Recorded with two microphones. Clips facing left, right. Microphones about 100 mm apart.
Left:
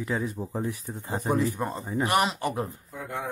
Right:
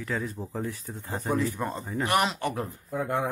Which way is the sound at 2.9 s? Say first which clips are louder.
Right 8 dB; 65° right (ahead or behind).